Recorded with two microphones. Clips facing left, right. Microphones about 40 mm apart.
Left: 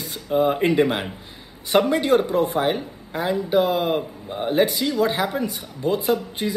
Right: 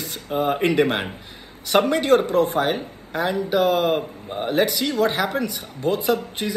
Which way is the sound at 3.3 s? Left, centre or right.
Right.